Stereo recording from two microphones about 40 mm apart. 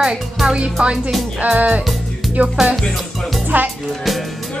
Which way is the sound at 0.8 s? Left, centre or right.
Right.